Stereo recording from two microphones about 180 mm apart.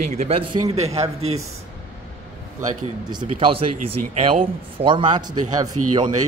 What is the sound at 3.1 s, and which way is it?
Speech, 25° right (ahead or behind).